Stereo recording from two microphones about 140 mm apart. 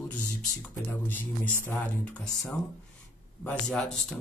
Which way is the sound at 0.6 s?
10° left (ahead or behind).